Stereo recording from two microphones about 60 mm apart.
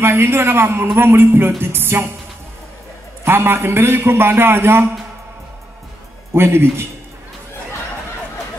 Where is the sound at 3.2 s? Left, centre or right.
Right.